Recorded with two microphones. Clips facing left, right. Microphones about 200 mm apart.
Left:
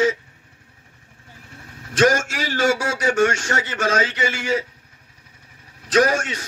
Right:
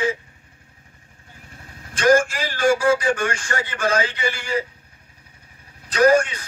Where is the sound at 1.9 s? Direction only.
85° left.